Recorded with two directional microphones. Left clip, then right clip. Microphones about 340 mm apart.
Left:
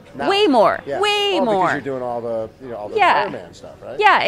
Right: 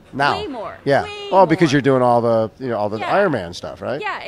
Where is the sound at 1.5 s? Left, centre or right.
Right.